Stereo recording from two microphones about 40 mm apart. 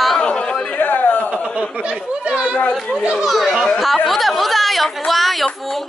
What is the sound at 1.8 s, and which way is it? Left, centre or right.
Speech, right.